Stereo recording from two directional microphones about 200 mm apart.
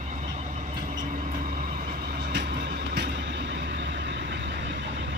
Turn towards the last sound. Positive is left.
turn(degrees=-60)  # may be behind; listen again after turning